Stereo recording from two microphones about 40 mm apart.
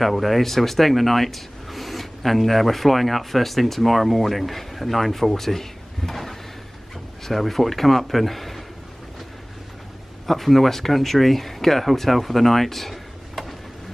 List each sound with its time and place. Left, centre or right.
0.0 s a man's voice: centre
10.2 s speech: centre